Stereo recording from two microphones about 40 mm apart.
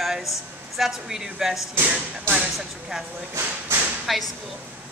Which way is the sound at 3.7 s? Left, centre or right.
Right.